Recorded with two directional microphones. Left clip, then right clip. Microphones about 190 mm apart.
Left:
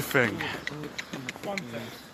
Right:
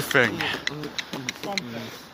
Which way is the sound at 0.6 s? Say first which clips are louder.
Right 6 dB; 50° right (ahead or behind).